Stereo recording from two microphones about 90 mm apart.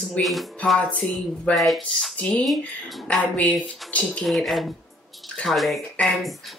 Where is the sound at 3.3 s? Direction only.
15° left (ahead or behind).